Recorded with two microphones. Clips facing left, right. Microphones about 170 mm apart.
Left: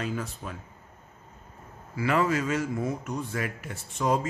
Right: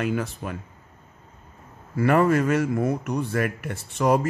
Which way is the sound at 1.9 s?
55° right (ahead or behind).